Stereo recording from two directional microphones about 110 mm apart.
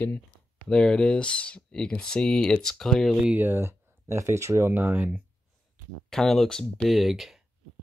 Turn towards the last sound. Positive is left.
turn(degrees=0)  # may be behind; listen again after turning